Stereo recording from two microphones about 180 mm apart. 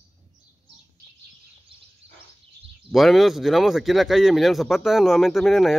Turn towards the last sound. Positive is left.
turn(degrees=0)  # may be behind; listen again after turning